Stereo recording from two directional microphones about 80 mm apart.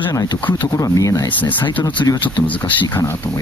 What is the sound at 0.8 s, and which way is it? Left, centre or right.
Speech, left.